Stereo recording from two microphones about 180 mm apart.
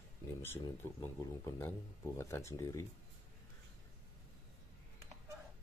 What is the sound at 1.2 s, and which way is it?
Speech, 20° left (ahead or behind).